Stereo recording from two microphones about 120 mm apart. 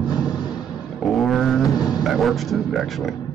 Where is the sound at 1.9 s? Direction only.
Centre (ahead or behind).